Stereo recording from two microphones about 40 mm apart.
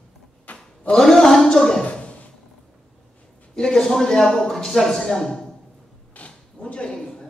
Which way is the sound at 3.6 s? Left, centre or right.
Centre.